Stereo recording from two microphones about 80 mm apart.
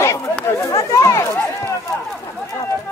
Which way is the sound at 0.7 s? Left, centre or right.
Left.